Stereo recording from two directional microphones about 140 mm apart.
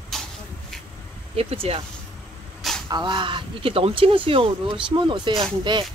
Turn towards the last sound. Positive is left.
turn(degrees=-30)  # may be behind; listen again after turning